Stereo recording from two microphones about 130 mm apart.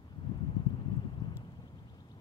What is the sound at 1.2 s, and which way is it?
Vehicle, 30° left (ahead or behind).